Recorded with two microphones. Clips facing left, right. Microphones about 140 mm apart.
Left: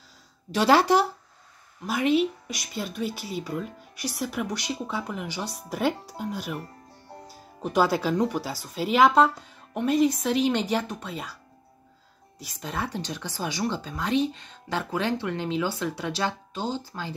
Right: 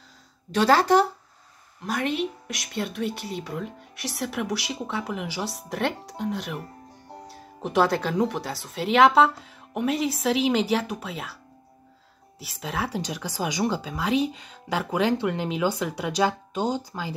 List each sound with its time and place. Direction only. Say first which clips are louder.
0.5 s speech: right 1 dB; 10° left (ahead or behind)
7.6 s speech: right 1 dB; centre (ahead or behind)
12.4 s speech: right 2 dB; 5° right (ahead or behind)